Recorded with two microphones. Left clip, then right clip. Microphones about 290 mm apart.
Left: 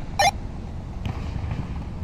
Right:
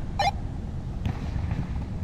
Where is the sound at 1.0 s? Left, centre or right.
Centre.